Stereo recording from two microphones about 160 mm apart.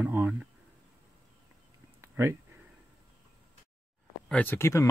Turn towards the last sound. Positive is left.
turn(degrees=15)  # may be behind; listen again after turning